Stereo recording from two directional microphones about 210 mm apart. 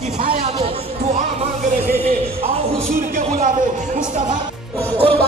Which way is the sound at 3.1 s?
40° right (ahead or behind).